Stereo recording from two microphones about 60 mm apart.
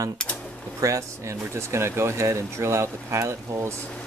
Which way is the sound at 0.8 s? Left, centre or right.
Right.